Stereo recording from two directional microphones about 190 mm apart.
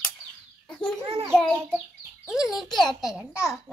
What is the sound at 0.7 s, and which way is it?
Bird, 5° left (ahead or behind).